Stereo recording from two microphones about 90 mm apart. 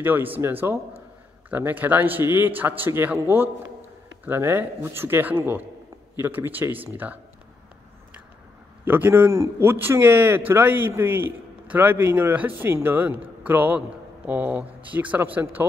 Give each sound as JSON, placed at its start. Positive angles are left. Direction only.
{"t": 0.0, "sound": "a man's voice", "side_deg": -20}
{"t": 8.8, "sound": "a man's voice", "side_deg": -20}